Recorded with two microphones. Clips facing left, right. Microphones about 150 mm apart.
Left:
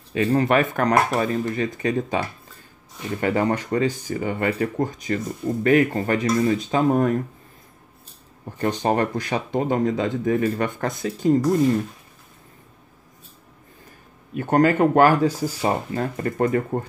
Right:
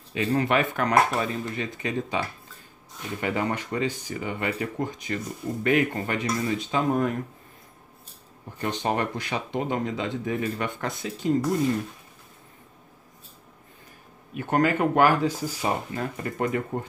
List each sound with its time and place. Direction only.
0.1 s speech: 45° left (ahead or behind)
3.2 s speech: 45° left (ahead or behind)
8.5 s speech: 45° left (ahead or behind)
14.3 s speech: 40° left (ahead or behind)